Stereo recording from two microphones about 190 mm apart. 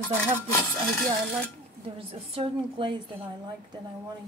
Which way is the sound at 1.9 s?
30° right (ahead or behind).